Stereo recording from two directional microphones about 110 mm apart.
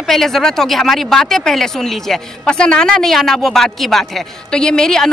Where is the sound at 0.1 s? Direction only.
5° left (ahead or behind).